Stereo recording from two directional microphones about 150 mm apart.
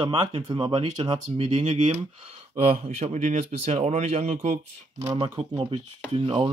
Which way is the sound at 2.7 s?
50° right (ahead or behind).